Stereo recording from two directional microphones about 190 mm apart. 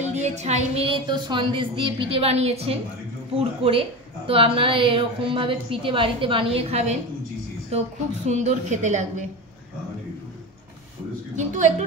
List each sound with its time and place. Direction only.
0.0 s a woman's voice: 35° right (ahead or behind)
8.3 s a woman's voice: 35° right (ahead or behind)
11.3 s a woman's voice: 40° right (ahead or behind)